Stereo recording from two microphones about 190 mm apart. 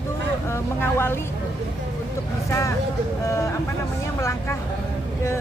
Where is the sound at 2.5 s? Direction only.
15° left (ahead or behind).